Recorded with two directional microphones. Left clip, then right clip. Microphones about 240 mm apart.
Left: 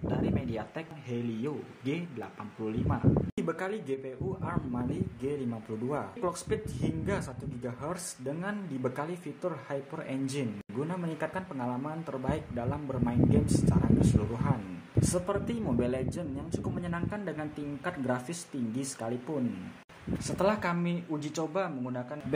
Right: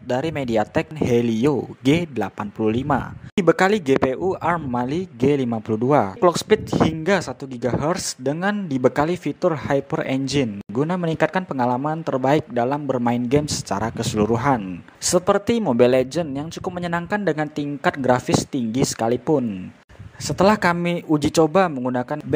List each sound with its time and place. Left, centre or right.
0.1 s speech: right